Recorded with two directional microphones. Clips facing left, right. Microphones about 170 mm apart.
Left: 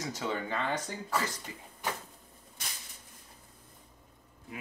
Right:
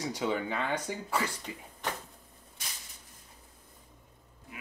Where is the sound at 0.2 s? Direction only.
15° right (ahead or behind).